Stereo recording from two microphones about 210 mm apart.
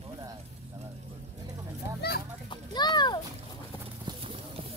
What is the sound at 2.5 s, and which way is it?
Children playing, 20° left (ahead or behind).